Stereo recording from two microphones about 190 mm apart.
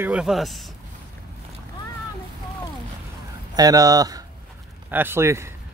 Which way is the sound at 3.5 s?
20° right (ahead or behind).